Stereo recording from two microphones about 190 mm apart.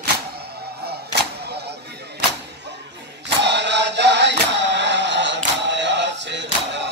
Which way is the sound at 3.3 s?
65° right (ahead or behind).